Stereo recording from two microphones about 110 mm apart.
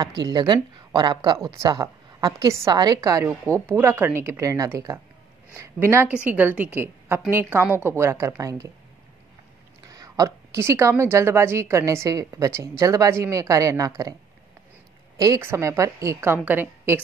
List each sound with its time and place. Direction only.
0.0 s a woman's voice: 40° right (ahead or behind)
9.8 s a woman's voice: 35° right (ahead or behind)
15.1 s a woman's voice: 35° right (ahead or behind); by 17.0 s 15° right (ahead or behind)